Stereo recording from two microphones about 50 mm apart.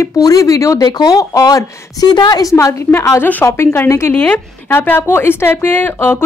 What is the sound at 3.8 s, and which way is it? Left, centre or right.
Speech, left.